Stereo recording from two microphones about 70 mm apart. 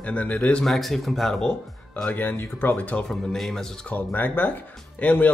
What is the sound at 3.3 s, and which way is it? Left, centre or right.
Speech, centre.